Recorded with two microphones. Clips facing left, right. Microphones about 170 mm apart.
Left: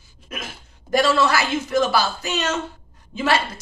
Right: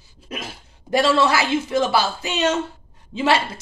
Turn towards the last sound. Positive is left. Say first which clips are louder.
# right 2 dB
turn(degrees=-25)  # may be behind; listen again after turning